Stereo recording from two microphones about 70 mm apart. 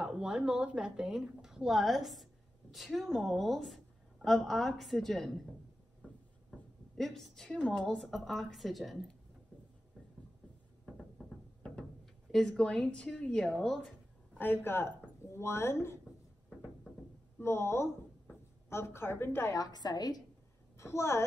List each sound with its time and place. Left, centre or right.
0.0 s a woman's voice: centre
7.0 s a woman's voice: centre
8.0 s a woman's voice: centre
12.3 s a woman's voice: centre
14.4 s speech: left
17.4 s speech: left
19.5 s a woman's voice: left
20.7 s a woman's voice: left